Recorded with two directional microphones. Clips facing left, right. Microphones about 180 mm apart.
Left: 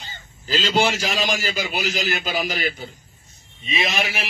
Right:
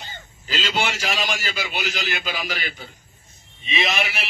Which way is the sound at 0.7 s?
40° left (ahead or behind).